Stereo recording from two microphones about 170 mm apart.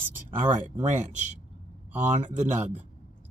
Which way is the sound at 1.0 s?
45° right (ahead or behind).